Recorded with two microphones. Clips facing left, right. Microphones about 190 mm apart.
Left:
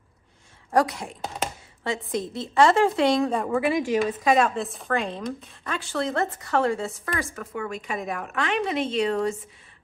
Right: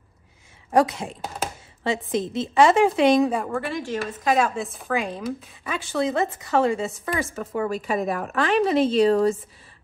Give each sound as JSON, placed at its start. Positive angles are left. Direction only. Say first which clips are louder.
{"t": 0.7, "sound": "a woman's voice", "louder": "right 3 dB", "side_deg": -20}
{"t": 1.2, "sound": "chopping", "louder": "left 1 dB", "side_deg": 0}
{"t": 1.8, "sound": "a woman's voice", "louder": "right 3 dB", "side_deg": -20}
{"t": 3.3, "sound": "a woman's voice", "louder": "left 2 dB", "side_deg": 0}
{"t": 5.8, "sound": "a woman's voice", "louder": "right 3 dB", "side_deg": -20}
{"t": 7.3, "sound": "speech", "louder": "right 6 dB", "side_deg": -30}